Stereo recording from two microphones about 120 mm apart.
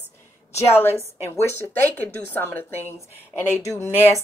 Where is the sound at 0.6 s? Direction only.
20° left (ahead or behind).